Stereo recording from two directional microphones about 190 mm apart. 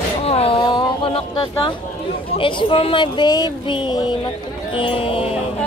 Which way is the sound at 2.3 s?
25° left (ahead or behind).